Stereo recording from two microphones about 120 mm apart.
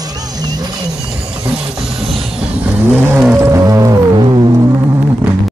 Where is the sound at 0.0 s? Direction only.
35° right (ahead or behind).